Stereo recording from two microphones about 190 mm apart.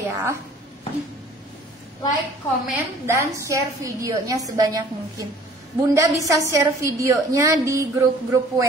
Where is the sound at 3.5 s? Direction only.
15° right (ahead or behind).